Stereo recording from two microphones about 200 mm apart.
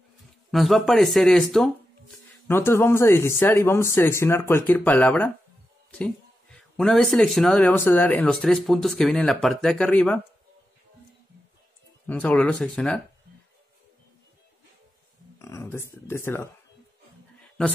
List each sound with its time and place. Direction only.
0.5 s speech: centre (ahead or behind)
2.4 s speech: 10° left (ahead or behind)
12.1 s speech: 5° left (ahead or behind)
15.3 s a sound: 15° left (ahead or behind)